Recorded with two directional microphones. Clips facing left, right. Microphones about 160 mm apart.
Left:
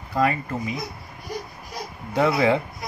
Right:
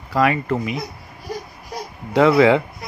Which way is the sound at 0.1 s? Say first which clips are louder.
Right 4 dB; 90° right.